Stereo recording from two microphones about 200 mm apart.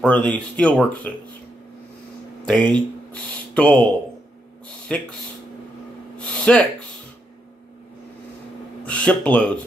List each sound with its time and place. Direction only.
0.0 s speech: 5° left (ahead or behind)
2.5 s speech: 25° right (ahead or behind)
3.1 s speech: 5° left (ahead or behind)
4.9 s speech: 5° left (ahead or behind)
6.1 s a sound: 5° left (ahead or behind)
8.8 s speech: 5° left (ahead or behind)